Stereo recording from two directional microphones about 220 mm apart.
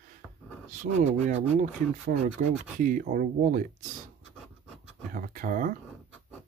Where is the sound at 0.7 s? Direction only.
30° right (ahead or behind).